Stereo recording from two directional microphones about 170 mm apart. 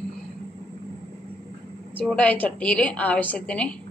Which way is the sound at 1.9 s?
5° left (ahead or behind).